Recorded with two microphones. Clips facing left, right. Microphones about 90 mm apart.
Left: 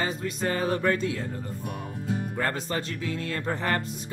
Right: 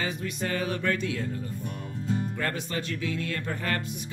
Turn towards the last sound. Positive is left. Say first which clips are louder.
# left 3 dB
turn(degrees=25)  # may be behind; listen again after turning